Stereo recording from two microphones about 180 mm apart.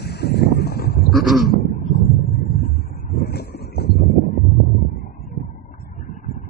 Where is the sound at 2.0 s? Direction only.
55° left (ahead or behind).